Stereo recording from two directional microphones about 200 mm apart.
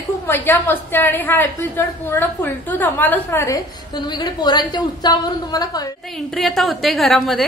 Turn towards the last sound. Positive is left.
turn(degrees=0)  # may be behind; listen again after turning